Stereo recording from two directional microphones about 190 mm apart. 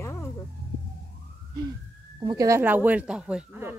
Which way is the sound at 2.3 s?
15° right (ahead or behind).